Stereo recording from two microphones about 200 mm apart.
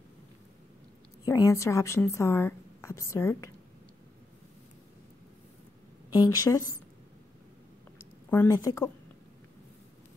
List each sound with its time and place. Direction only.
1.2 s a woman's voice: 15° left (ahead or behind)
6.0 s a woman's voice: 20° left (ahead or behind)
8.3 s a woman's voice: 15° left (ahead or behind)